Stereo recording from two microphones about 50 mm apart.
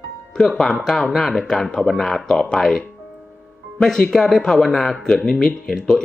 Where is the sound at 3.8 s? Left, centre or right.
Centre.